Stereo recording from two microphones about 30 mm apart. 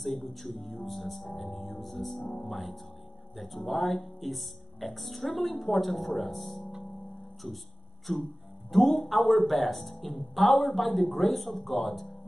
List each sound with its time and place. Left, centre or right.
0.0 s speech: centre